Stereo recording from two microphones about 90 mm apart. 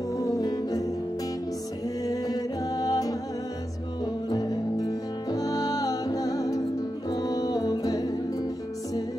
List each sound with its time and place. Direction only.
0.2 s music: 45° left (ahead or behind)
2.0 s music: 45° left (ahead or behind)